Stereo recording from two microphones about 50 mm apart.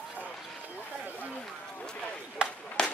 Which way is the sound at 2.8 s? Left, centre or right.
Centre.